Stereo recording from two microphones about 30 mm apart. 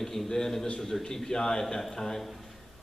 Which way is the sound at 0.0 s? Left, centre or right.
Centre.